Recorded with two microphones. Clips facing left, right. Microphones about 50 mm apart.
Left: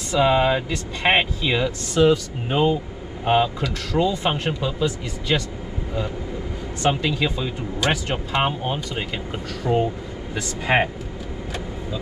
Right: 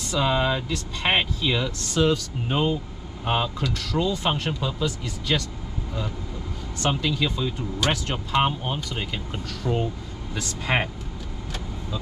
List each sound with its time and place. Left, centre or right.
0.1 s speech: centre
6.8 s speech: centre